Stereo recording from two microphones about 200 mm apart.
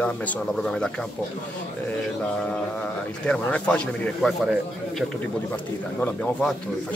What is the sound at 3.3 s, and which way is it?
A man's voice, 5° left (ahead or behind).